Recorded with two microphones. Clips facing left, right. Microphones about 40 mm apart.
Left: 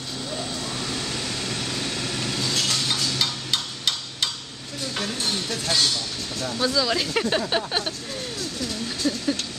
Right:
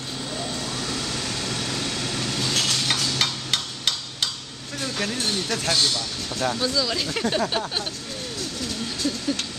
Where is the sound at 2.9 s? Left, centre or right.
Right.